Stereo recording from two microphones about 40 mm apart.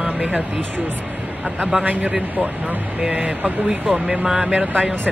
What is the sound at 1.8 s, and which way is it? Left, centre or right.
Speech, right.